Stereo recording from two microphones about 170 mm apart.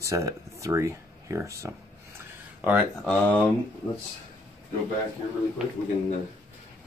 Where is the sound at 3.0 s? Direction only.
5° left (ahead or behind).